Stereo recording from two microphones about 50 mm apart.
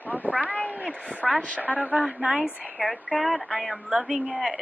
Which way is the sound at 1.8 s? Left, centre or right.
Right.